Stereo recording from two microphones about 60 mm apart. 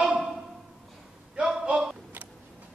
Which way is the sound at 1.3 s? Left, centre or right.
Centre.